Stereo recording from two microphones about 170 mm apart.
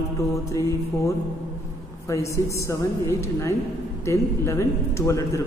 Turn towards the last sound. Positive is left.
turn(degrees=20)  # may be behind; listen again after turning